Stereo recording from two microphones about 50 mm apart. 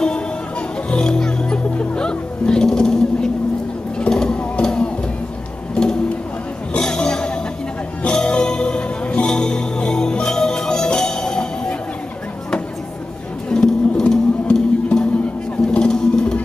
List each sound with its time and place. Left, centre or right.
0.8 s music: centre
6.7 s a sound: centre
8.0 s music: centre
13.5 s music: centre